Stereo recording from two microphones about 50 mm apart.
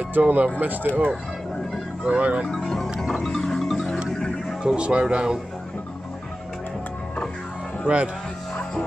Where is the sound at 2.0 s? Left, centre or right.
Right.